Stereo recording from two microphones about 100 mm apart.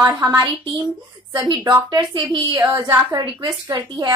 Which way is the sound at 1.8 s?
50° right (ahead or behind).